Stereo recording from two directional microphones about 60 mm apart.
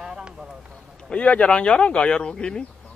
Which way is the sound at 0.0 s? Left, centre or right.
Centre.